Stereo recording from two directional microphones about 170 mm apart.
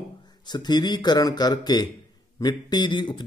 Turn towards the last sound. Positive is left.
turn(degrees=25)  # may be behind; listen again after turning